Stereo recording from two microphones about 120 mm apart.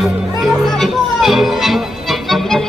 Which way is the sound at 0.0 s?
Centre (ahead or behind).